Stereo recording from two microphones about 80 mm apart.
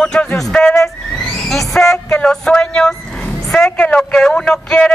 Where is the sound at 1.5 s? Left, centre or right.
Centre.